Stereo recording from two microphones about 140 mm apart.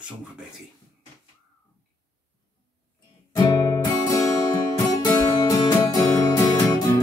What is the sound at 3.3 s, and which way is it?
Music, 30° left (ahead or behind).